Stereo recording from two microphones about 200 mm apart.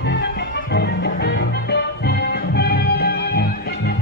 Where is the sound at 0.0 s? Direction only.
55° left (ahead or behind).